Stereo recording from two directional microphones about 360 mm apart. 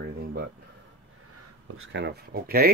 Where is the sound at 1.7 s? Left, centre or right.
Right.